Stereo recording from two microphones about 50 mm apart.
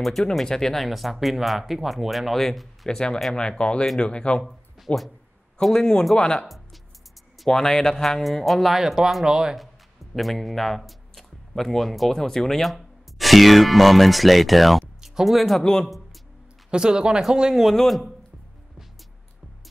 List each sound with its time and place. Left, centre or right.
0.0 s speech: centre
3.3 s a man's voice: centre
4.4 s speech: centre
5.6 s a man's voice: centre
6.4 s music: centre
7.3 s speech: centre
10.1 s a man's voice: centre
16.7 s speech: centre
17.6 s speech: centre